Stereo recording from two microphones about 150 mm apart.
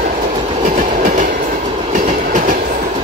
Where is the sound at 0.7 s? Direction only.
55° right (ahead or behind).